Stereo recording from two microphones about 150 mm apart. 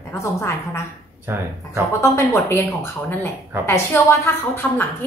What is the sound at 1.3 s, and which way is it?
Speech, 15° right (ahead or behind).